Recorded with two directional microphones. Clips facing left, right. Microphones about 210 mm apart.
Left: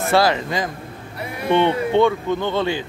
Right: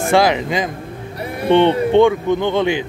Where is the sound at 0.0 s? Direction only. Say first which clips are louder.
Right 3 dB; 15° right (ahead or behind).